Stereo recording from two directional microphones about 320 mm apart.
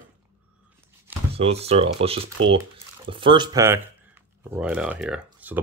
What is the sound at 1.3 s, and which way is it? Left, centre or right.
Speech, centre.